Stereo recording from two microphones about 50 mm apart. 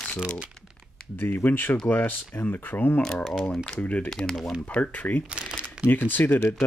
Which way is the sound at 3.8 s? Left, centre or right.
Left.